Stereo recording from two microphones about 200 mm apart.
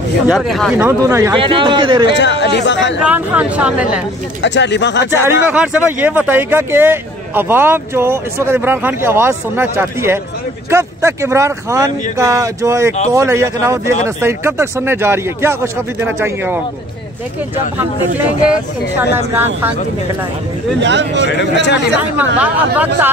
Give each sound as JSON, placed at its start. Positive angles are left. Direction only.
{"t": 0.3, "sound": "speech", "side_deg": 0}
{"t": 0.7, "sound": "speech", "side_deg": -10}
{"t": 1.4, "sound": "a man's voice", "side_deg": -25}
{"t": 2.0, "sound": "speech", "side_deg": 60}
{"t": 3.0, "sound": "speech", "side_deg": -5}
{"t": 4.4, "sound": "speech", "side_deg": 60}
{"t": 5.1, "sound": "speech", "side_deg": -10}
{"t": 18.5, "sound": "speech", "side_deg": -10}
{"t": 20.8, "sound": "speech", "side_deg": -60}
{"t": 22.1, "sound": "speech", "side_deg": -10}